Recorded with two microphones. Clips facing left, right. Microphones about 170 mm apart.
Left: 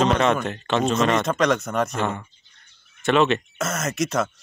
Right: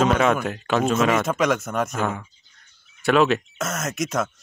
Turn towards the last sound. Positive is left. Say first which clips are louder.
# left 2 dB
turn(degrees=0)  # may be behind; listen again after turning